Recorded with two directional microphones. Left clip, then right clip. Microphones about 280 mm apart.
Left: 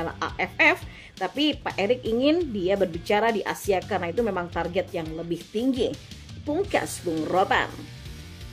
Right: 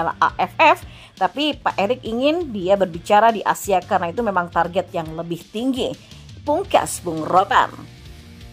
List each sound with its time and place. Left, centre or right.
0.0 s speech: centre